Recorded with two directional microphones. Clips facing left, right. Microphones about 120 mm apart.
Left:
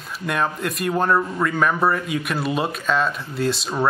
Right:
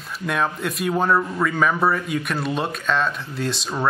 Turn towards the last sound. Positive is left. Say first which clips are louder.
# left 3 dB
turn(degrees=0)  # may be behind; listen again after turning